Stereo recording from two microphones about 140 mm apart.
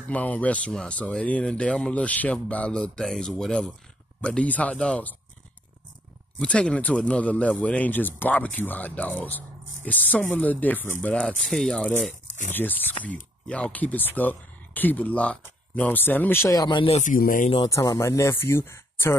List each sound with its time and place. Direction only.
0.1 s speech: 10° left (ahead or behind)
6.3 s speech: 10° left (ahead or behind)
16.5 s speech: 30° left (ahead or behind)
16.9 s speech: 70° left (ahead or behind)
17.6 s speech: 25° left (ahead or behind)